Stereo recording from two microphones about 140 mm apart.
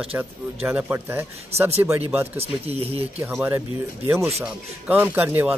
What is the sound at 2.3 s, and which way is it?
Speech, 45° right (ahead or behind).